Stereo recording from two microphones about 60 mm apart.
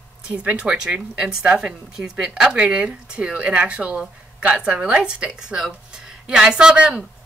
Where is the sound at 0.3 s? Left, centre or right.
Right.